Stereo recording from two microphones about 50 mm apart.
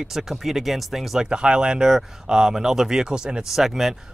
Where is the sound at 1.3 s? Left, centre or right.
Centre.